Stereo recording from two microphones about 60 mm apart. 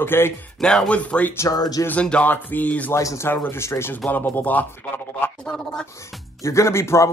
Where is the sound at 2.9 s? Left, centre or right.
Left.